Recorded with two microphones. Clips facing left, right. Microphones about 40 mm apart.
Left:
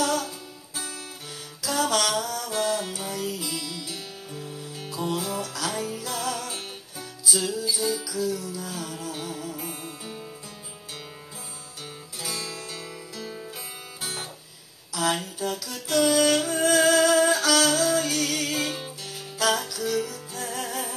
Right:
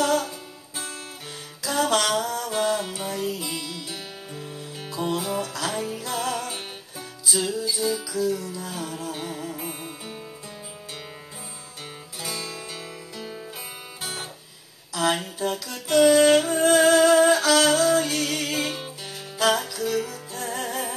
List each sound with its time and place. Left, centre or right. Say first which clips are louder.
0.0 s music: right 3 dB; centre
1.6 s music: right 2 dB; centre
12.2 s music: right 1 dB; centre
15.0 s a sound: right 2 dB; centre